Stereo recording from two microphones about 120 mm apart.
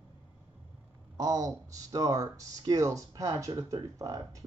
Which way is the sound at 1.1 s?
30° right (ahead or behind).